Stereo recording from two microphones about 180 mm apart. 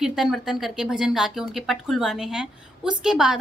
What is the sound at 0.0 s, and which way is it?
A woman's voice, centre (ahead or behind).